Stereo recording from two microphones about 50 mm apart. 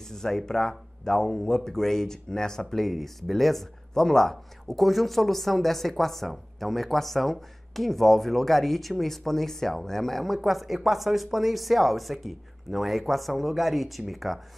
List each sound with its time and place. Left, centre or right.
0.1 s speech: centre
4.6 s speech: centre